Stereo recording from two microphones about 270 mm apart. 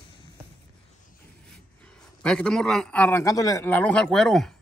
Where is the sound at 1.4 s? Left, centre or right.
Centre.